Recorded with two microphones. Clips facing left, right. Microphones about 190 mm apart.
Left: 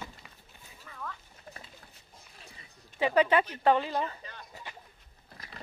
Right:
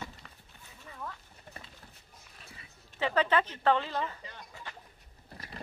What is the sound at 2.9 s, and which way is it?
Speech, 10° left (ahead or behind).